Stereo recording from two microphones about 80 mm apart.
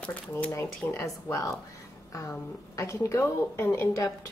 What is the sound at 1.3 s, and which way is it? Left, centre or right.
Speech, left.